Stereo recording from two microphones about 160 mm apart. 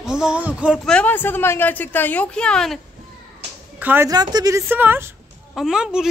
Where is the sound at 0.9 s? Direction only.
10° left (ahead or behind).